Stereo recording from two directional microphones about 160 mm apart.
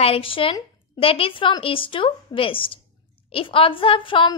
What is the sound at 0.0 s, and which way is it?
A woman's voice, 35° left (ahead or behind).